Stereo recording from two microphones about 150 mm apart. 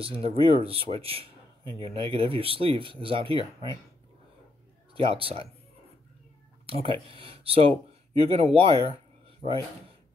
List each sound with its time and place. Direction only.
0.0 s speech: 40° right (ahead or behind)
4.9 s speech: 40° right (ahead or behind)
6.6 s speech: 40° right (ahead or behind)